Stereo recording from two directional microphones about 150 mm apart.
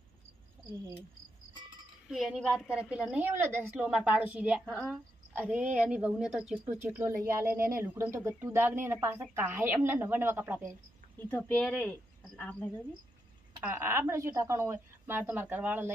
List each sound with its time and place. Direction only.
2.0 s speech: centre (ahead or behind)
4.8 s a sound: 5° left (ahead or behind)
5.8 s speech: 5° right (ahead or behind)
11.1 s speech: 15° left (ahead or behind)
13.6 s speech: 15° right (ahead or behind)